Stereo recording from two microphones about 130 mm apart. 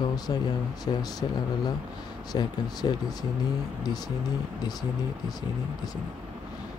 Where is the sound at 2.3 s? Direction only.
30° left (ahead or behind).